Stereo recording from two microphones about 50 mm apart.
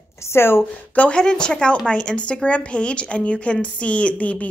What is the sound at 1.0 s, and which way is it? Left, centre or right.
Speech, centre.